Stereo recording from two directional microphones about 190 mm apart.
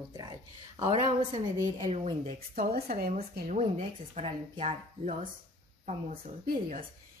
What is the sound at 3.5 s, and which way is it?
Speech, 35° right (ahead or behind).